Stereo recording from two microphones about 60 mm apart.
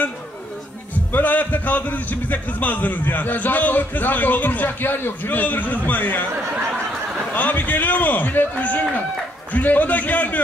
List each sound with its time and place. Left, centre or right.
1.1 s a man's voice: left
7.3 s a man's voice: left